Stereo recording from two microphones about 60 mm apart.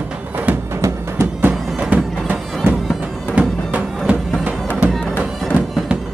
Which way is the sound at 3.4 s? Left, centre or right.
Right.